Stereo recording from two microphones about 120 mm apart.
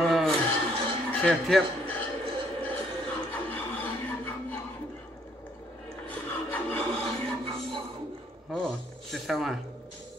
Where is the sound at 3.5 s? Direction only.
15° left (ahead or behind).